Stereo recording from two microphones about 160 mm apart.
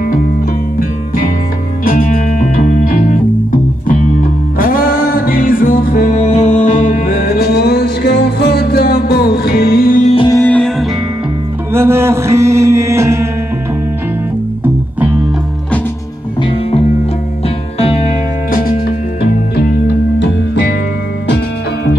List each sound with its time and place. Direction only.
0.7 s music: 65° left (ahead or behind)
10.2 s music: 20° left (ahead or behind)
10.5 s music: 5° left (ahead or behind)
11.7 s music: 15° right (ahead or behind)
16.3 s music: 30° left (ahead or behind)
18.5 s music: 65° left (ahead or behind)